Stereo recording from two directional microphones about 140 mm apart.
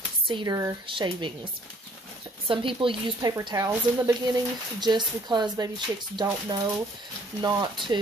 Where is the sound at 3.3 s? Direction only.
25° right (ahead or behind).